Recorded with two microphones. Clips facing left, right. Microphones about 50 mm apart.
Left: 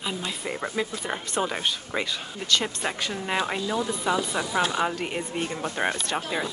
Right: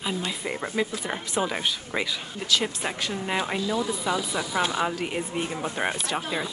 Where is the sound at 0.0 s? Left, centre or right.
Centre.